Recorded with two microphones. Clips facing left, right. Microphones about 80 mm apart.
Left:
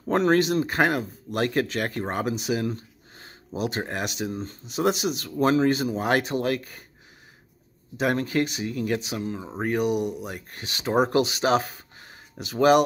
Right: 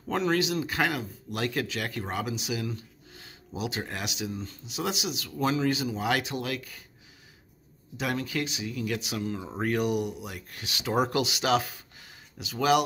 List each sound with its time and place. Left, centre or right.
0.1 s speech: left
8.0 s speech: left